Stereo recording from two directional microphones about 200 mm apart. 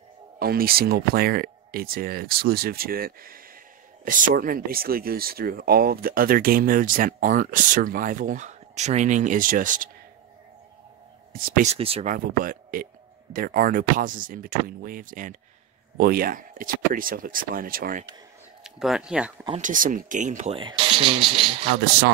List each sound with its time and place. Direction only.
0.4 s speech: 50° right (ahead or behind)
11.3 s speech: 45° right (ahead or behind)
11.7 s speech: 30° right (ahead or behind)
12.1 s speech: 45° right (ahead or behind)
18.6 s speech: centre (ahead or behind)
19.6 s speech: 40° right (ahead or behind)
20.5 s speech: 25° right (ahead or behind)